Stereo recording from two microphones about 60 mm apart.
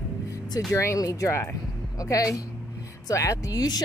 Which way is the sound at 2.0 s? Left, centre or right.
Left.